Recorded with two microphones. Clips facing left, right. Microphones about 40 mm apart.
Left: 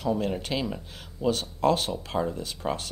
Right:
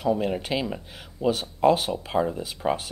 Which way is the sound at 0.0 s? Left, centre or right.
Centre.